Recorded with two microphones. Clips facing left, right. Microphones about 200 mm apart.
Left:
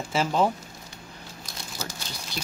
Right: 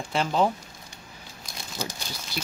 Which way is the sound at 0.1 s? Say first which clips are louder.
Even; centre (ahead or behind).